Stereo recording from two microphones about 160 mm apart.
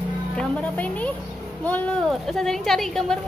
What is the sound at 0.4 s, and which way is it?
A woman's voice, 10° left (ahead or behind).